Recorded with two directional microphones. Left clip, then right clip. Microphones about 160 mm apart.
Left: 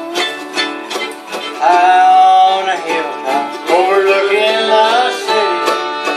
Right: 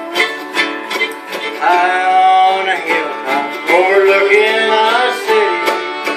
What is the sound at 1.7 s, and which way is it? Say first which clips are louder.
Music: left 4 dB; 45° left (ahead or behind).